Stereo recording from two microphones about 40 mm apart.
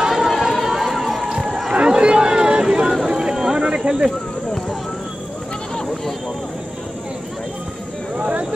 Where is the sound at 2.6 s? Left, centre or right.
Centre.